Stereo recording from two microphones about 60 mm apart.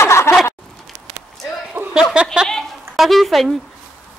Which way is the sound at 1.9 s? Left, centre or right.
Centre.